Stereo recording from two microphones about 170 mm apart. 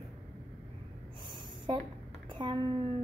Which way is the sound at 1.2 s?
30° right (ahead or behind).